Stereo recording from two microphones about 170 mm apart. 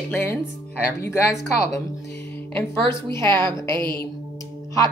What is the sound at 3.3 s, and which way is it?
Speech, 25° right (ahead or behind).